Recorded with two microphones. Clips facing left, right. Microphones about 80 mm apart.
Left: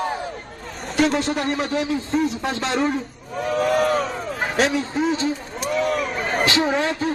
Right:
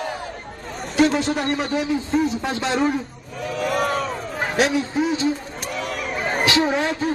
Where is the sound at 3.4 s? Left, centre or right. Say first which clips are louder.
Left 4 dB; left.